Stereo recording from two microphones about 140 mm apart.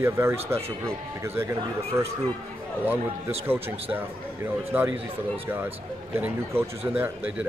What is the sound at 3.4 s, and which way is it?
Speech, 15° right (ahead or behind).